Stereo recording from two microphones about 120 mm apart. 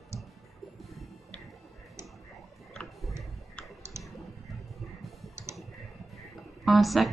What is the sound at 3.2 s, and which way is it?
Tick-tock, centre (ahead or behind).